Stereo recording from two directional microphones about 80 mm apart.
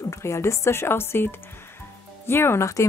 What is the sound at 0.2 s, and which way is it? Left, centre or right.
Speech, left.